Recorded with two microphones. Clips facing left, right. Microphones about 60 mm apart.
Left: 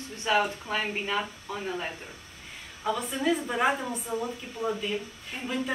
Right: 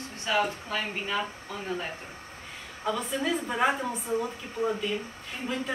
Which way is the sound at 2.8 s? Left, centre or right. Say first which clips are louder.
Left 1 dB; centre.